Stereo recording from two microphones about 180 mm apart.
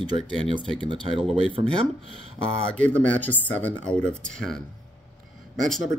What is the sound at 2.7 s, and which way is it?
Speech, 5° left (ahead or behind).